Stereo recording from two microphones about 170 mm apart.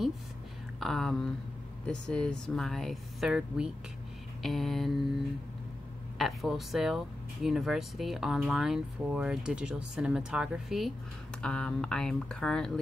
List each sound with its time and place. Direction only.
0.7 s speech: centre (ahead or behind)
6.1 s speech: centre (ahead or behind)